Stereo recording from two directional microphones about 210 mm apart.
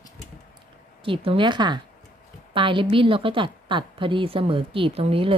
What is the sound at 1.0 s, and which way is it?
A woman's voice, 25° right (ahead or behind).